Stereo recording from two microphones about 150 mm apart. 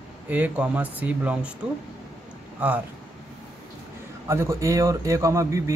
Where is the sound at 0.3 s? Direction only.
10° right (ahead or behind).